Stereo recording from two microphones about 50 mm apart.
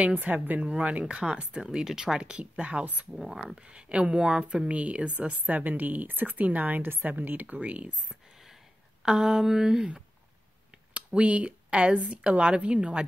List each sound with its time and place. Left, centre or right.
0.1 s speech: right
0.7 s speech: right
2.8 s speech: right
3.2 s speech: centre
3.5 s speech: right
9.0 s a sound: centre
11.1 s speech: right